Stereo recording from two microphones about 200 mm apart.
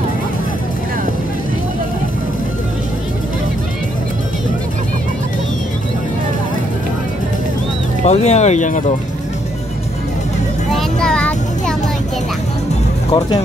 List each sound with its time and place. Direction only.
8.0 s speech: 35° left (ahead or behind)
10.7 s child singing: 5° left (ahead or behind)
13.1 s speech: 25° left (ahead or behind)